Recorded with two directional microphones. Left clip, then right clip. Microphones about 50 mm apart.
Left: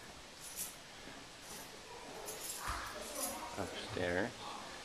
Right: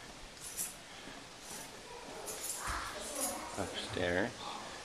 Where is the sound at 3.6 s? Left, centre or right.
Centre.